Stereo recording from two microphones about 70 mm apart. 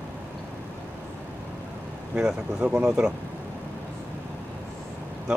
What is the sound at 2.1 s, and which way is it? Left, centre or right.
Speech, centre.